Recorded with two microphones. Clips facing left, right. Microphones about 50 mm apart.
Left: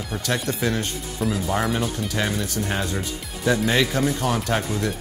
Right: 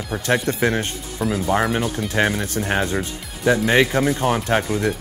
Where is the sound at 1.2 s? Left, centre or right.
Centre.